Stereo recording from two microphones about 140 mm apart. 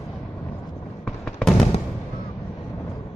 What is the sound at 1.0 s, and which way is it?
Fireworks, 5° left (ahead or behind).